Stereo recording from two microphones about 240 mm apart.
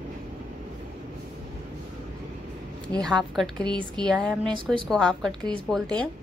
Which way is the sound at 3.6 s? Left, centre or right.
Centre.